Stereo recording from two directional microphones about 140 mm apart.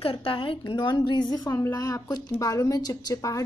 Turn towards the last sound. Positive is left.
turn(degrees=25)  # may be behind; listen again after turning